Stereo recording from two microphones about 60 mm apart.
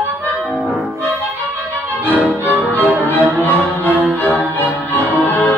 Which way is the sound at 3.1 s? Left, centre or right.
Left.